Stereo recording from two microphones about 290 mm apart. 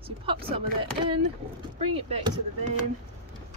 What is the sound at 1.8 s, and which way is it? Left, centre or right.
Speech, centre.